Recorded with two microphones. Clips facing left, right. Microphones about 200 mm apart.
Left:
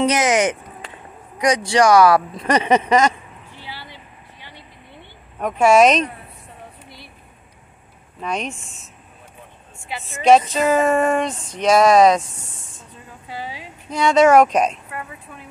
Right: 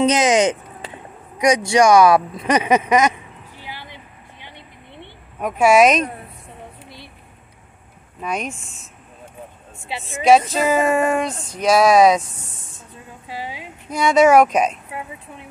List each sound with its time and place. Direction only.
0.0 s speech: 15° right (ahead or behind)
5.4 s speech: 5° right (ahead or behind)
8.2 s speech: 5° right (ahead or behind)
10.0 s a sound: centre (ahead or behind)
13.3 s speech: 15° right (ahead or behind)